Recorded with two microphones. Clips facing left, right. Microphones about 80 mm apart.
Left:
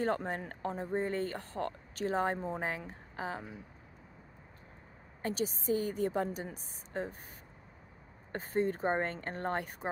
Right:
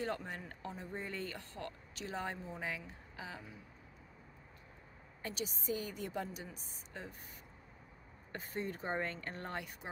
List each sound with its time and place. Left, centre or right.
0.0 s speech: left
5.2 s speech: left
8.3 s speech: left